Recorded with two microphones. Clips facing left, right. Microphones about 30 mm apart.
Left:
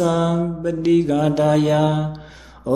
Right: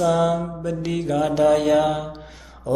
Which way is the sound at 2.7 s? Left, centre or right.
Centre.